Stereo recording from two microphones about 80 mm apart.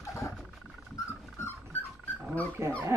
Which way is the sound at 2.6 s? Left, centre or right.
Right.